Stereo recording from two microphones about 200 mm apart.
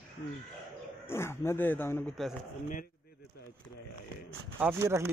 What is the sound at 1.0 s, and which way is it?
Speech, 10° left (ahead or behind).